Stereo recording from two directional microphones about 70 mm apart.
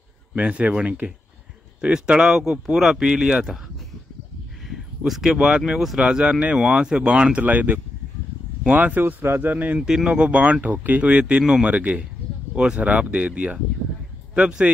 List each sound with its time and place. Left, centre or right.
0.4 s speech: centre
4.6 s a sound: centre
5.7 s speech: centre
5.9 s speech: centre
9.8 s speech: centre